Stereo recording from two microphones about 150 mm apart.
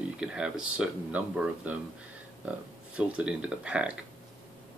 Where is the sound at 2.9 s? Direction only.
5° right (ahead or behind).